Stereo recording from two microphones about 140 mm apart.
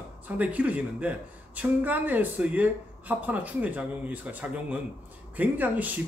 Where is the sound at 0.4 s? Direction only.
10° right (ahead or behind).